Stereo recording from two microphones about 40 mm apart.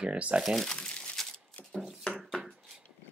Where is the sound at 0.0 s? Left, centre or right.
Right.